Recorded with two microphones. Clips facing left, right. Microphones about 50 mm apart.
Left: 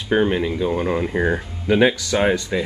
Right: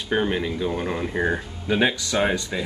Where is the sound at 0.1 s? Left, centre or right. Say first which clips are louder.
Left 5 dB; centre.